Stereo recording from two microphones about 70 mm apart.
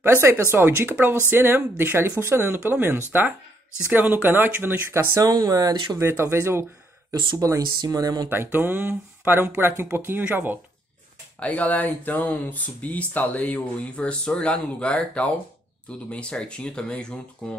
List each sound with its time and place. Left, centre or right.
0.0 s speech: right
5.2 s speech: right
5.9 s speech: right
7.3 s speech: right
7.8 s speech: right
8.3 s speech: right
11.3 s speech: left